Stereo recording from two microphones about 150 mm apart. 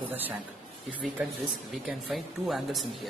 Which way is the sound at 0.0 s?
10° right (ahead or behind).